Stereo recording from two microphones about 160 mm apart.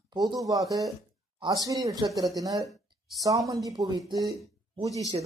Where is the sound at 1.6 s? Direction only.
20° right (ahead or behind).